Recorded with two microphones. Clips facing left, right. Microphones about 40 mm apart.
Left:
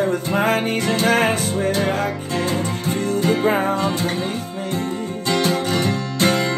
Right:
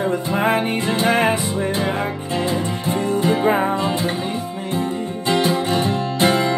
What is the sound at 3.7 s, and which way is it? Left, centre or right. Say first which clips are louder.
Music: even; right.